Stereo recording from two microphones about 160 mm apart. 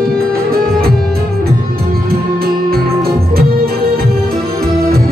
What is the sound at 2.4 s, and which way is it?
Music, 70° right (ahead or behind).